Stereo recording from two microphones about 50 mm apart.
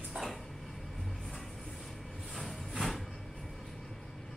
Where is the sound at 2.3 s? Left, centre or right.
Centre.